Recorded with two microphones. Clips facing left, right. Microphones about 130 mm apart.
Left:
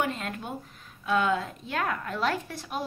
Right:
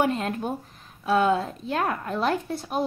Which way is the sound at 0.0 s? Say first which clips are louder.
Right 6 dB; 40° right (ahead or behind).